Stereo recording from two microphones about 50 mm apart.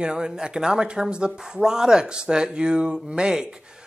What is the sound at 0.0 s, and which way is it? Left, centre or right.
Speech, centre.